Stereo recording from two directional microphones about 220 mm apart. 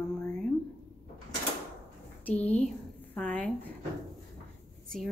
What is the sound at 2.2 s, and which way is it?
Speech, 5° left (ahead or behind).